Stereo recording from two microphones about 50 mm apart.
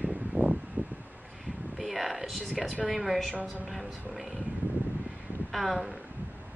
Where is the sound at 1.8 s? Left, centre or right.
Centre.